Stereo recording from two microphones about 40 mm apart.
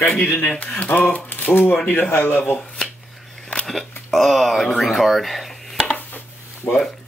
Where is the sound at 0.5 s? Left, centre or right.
Left.